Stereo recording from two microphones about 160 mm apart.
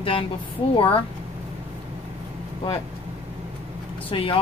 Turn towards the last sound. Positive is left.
turn(degrees=35)  # may be behind; listen again after turning